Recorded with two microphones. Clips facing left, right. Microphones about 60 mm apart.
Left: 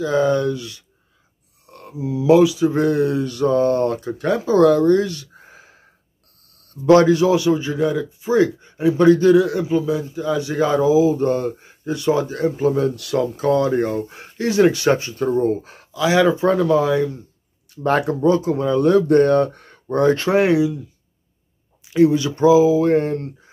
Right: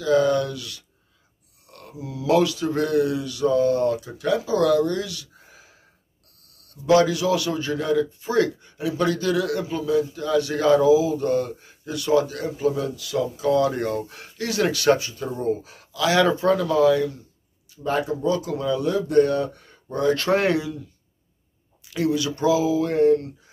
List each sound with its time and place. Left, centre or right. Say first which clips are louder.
0.0 s a man's voice: left 2 dB; left
2.8 s a man's voice: left 1 dB; left
12.9 s speech: left 4 dB; left
13.7 s a man's voice: left 5 dB; left
15.9 s a man's voice: left 3 dB; centre
17.6 s speech: left 6 dB; left
18.2 s speech: left 6 dB; left
18.8 s speech: left 6 dB; left
20.2 s speech: left 5 dB; centre
21.8 s a man's voice: left 8 dB; left